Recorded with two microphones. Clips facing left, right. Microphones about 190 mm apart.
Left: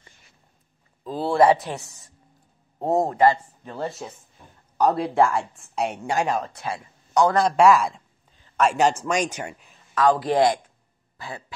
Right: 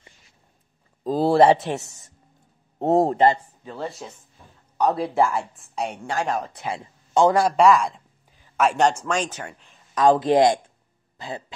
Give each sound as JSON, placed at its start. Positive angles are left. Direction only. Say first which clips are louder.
{"t": 1.0, "sound": "speech", "louder": "right 2 dB", "side_deg": -40}
{"t": 4.0, "sound": "speech", "louder": "left 2 dB", "side_deg": 0}
{"t": 6.4, "sound": "speech", "louder": "right 1 dB", "side_deg": -20}
{"t": 7.3, "sound": "speech", "louder": "even", "side_deg": 0}
{"t": 9.0, "sound": "speech", "louder": "left 1 dB", "side_deg": 10}
{"t": 9.9, "sound": "speech", "louder": "right 3 dB", "side_deg": -20}
{"t": 11.1, "sound": "throat clearing", "louder": "right 3 dB", "side_deg": -20}